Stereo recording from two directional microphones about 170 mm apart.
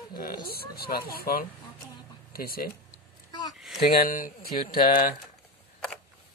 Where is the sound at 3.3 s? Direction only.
25° left (ahead or behind).